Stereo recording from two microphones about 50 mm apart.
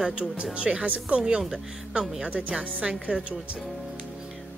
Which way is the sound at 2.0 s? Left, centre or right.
Centre.